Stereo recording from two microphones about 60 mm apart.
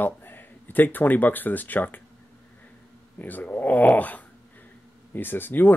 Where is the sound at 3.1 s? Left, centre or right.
Left.